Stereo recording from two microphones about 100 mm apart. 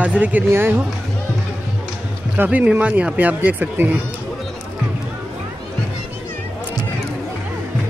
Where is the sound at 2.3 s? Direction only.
15° right (ahead or behind).